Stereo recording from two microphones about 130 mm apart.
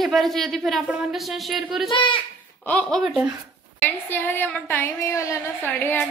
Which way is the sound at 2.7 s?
10° left (ahead or behind).